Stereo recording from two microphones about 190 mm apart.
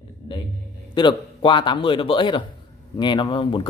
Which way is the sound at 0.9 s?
25° left (ahead or behind).